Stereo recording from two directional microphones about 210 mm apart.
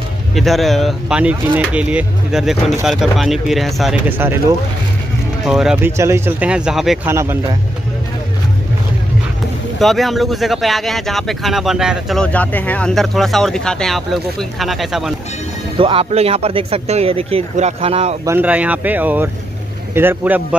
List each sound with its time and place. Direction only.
0.3 s speech: centre (ahead or behind)
7.1 s speech: 10° right (ahead or behind)
9.8 s speech: centre (ahead or behind)
15.8 s speech: 25° right (ahead or behind)
18.2 s speech: 10° right (ahead or behind)